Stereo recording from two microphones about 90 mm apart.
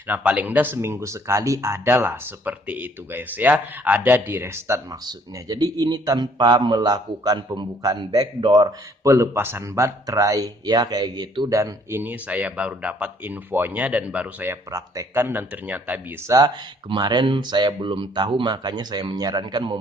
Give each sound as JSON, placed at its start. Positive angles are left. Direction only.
{"t": 0.1, "sound": "speech", "side_deg": -15}
{"t": 5.0, "sound": "a man's voice", "side_deg": -45}
{"t": 9.0, "sound": "speech", "side_deg": -35}
{"t": 11.9, "sound": "speech", "side_deg": -20}
{"t": 14.5, "sound": "speech", "side_deg": -30}
{"t": 16.3, "sound": "speech", "side_deg": -40}
{"t": 16.9, "sound": "speech", "side_deg": -60}